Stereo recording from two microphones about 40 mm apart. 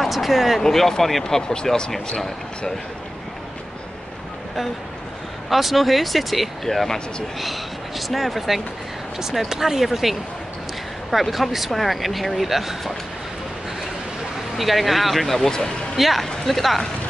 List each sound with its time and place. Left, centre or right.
0.0 s speech: centre
0.6 s speech: centre
1.2 s speech: centre
5.5 s speech: centre
8.1 s speech: centre
14.6 s speech: centre
16.0 s speech: centre